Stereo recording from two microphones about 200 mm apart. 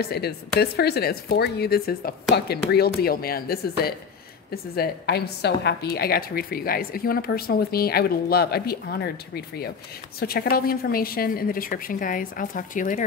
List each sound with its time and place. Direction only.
0.0 s a woman's voice: 50° left (ahead or behind)